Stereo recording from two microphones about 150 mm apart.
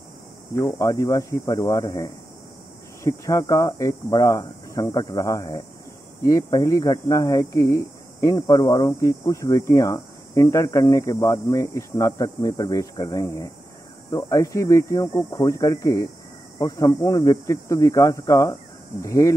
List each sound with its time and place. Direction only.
0.6 s speech: 20° left (ahead or behind)